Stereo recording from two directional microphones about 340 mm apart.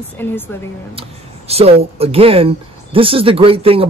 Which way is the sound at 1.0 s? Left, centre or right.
Centre.